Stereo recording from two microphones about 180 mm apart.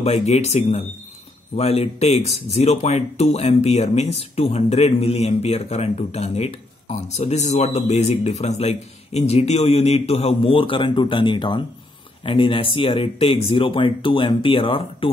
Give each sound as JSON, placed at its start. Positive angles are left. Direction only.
{"t": 0.0, "sound": "speech", "side_deg": 35}